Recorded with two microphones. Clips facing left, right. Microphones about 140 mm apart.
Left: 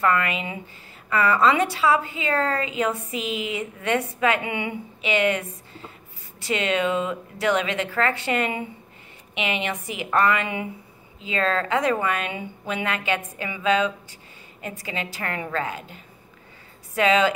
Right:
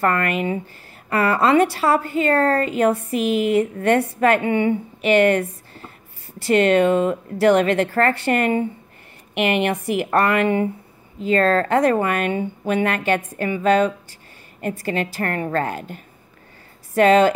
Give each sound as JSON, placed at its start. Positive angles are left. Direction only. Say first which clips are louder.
{"t": 0.0, "sound": "speech", "louder": "right 3 dB", "side_deg": -50}